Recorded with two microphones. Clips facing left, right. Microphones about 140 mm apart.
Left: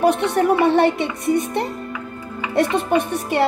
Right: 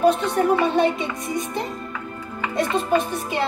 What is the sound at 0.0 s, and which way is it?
A woman's voice, 70° left (ahead or behind).